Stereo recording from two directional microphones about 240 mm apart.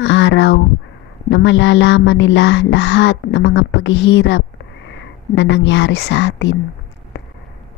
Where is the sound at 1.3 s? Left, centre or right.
Left.